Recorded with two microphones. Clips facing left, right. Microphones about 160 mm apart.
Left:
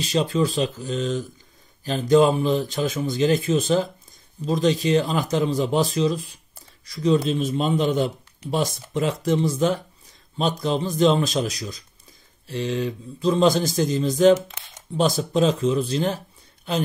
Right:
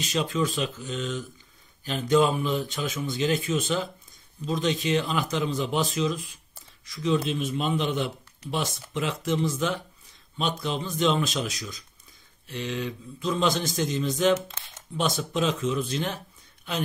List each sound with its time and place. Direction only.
0.0 s speech: 35° left (ahead or behind)